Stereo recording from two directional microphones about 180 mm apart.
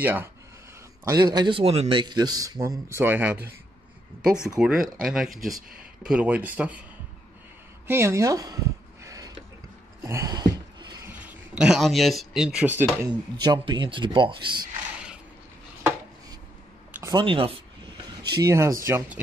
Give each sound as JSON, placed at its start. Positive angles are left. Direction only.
{"t": 0.0, "sound": "speech", "side_deg": -10}
{"t": 1.0, "sound": "speech", "side_deg": -20}
{"t": 4.6, "sound": "speech", "side_deg": -5}
{"t": 7.8, "sound": "speech", "side_deg": -15}
{"t": 9.0, "sound": "mechanisms", "side_deg": -20}
{"t": 10.0, "sound": "a sound", "side_deg": -20}
{"t": 11.1, "sound": "speech", "side_deg": -5}
{"t": 13.4, "sound": "speech", "side_deg": -25}
{"t": 16.9, "sound": "a sound", "side_deg": -15}
{"t": 17.2, "sound": "speech", "side_deg": -30}